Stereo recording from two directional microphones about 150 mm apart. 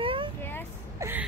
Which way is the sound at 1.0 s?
15° right (ahead or behind).